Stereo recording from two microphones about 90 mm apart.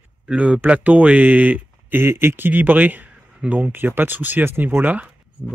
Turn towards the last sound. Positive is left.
turn(degrees=-20)  # may be behind; listen again after turning